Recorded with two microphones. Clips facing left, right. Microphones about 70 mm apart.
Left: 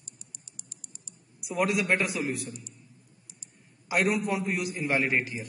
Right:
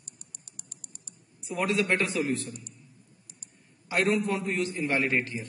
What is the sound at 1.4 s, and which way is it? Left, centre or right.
A man's voice, centre.